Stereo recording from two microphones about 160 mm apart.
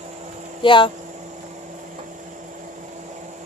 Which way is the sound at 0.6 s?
30° left (ahead or behind).